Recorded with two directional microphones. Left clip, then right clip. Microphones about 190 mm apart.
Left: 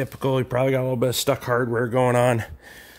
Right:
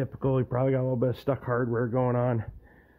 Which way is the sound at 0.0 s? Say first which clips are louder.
Left 5 dB; 10° left (ahead or behind).